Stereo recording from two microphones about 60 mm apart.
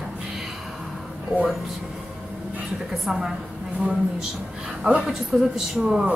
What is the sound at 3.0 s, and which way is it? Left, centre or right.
Speech, centre.